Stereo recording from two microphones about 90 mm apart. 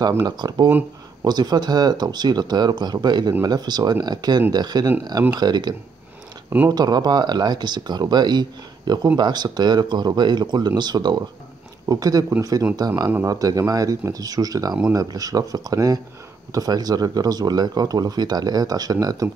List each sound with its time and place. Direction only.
0.2 s speech: 50° right (ahead or behind)